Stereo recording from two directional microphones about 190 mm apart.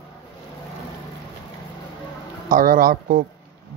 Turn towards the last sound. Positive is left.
turn(degrees=-50)  # may be behind; listen again after turning